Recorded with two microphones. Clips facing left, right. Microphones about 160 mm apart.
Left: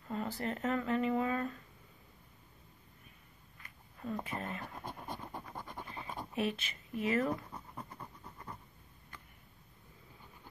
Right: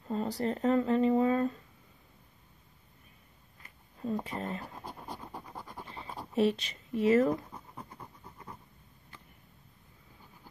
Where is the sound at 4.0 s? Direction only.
35° right (ahead or behind).